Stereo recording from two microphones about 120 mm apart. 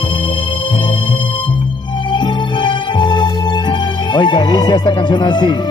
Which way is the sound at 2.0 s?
40° left (ahead or behind).